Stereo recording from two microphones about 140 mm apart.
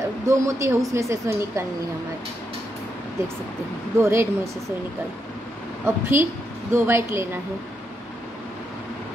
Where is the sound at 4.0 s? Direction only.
20° right (ahead or behind).